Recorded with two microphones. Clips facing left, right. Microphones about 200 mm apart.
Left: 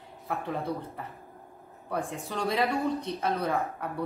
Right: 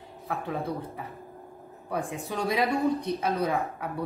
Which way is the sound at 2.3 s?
15° right (ahead or behind).